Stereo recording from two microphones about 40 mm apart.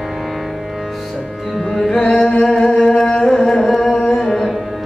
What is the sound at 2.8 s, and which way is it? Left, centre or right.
Music, centre.